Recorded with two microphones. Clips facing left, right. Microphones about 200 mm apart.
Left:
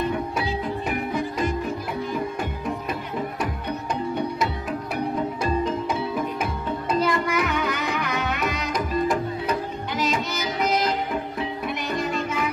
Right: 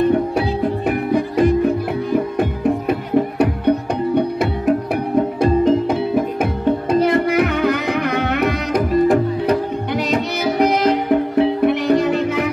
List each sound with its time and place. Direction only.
0.1 s music: 60° right (ahead or behind)
2.9 s tabla: 60° right (ahead or behind)
5.4 s music: 60° right (ahead or behind)